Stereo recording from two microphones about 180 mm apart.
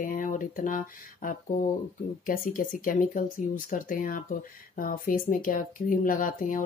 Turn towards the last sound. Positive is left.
turn(degrees=50)  # may be behind; listen again after turning